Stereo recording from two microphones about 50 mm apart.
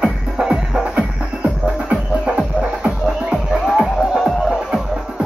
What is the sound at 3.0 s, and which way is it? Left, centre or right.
Music, centre.